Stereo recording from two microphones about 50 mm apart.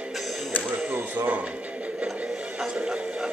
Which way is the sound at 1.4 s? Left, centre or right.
Right.